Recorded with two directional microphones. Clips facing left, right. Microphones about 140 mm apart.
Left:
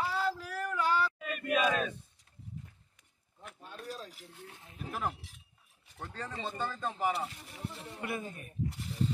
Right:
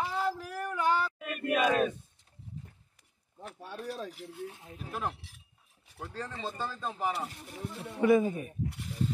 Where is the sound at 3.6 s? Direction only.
70° right (ahead or behind).